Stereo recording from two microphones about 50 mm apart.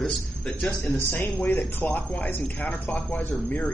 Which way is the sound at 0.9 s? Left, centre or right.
Left.